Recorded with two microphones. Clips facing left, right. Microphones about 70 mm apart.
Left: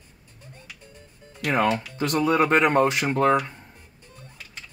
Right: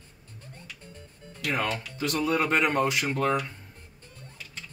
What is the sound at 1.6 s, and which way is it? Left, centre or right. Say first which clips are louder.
Speech: left 8 dB; centre.